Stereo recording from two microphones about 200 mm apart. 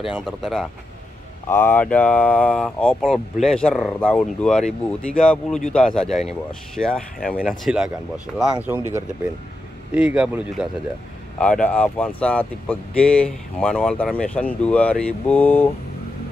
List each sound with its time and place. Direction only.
0.0 s speech: centre (ahead or behind)
9.9 s speech: 5° right (ahead or behind)